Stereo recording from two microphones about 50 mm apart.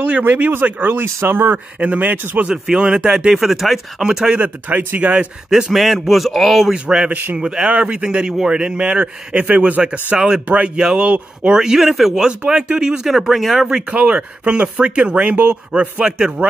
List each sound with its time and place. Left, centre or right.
0.0 s speech: right
1.0 s speech: right
1.8 s speech: right
2.5 s speech: centre
4.0 s speech: centre
4.4 s speech: right
5.7 s speech: centre
6.7 s speech: centre
10.1 s speech: centre
13.3 s speech: centre
13.8 s speech: right